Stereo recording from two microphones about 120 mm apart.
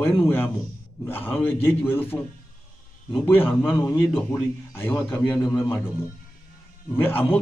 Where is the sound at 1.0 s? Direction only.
20° left (ahead or behind).